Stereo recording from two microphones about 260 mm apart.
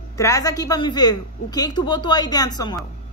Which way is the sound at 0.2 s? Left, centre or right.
Centre.